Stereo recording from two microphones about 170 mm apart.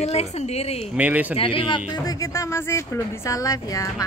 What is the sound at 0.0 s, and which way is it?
Speech, 40° left (ahead or behind).